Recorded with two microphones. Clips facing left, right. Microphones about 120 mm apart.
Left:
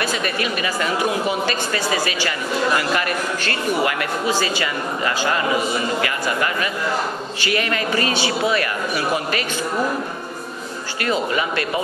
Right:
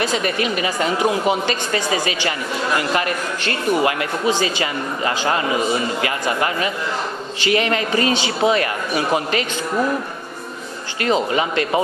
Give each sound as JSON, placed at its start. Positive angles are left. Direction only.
{"t": 0.0, "sound": "speech", "side_deg": -20}
{"t": 11.0, "sound": "speech", "side_deg": -25}